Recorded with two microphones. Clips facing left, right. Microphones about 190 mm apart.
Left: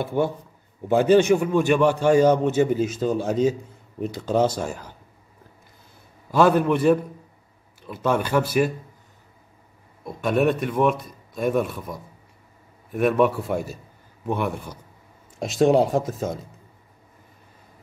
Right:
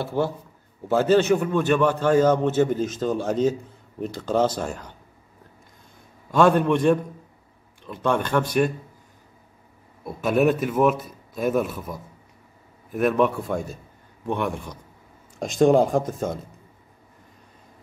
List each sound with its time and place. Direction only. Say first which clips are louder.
0.0 s a man's voice: left 1 dB; 20° left (ahead or behind)
6.3 s a man's voice: even; 5° left (ahead or behind)
10.0 s a man's voice: right 1 dB; 5° right (ahead or behind)